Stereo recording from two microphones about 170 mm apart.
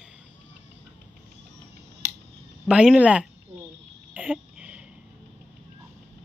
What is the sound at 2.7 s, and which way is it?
Speech, 5° right (ahead or behind).